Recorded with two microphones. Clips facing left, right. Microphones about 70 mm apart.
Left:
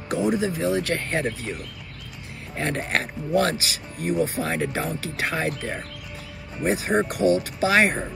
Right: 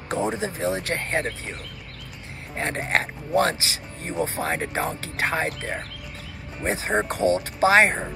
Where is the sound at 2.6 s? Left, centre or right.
Right.